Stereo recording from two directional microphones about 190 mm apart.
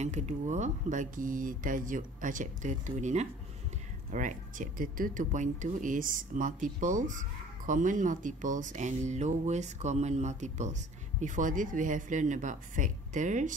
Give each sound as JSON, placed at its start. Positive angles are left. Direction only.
{"t": 0.0, "sound": "speech", "side_deg": -35}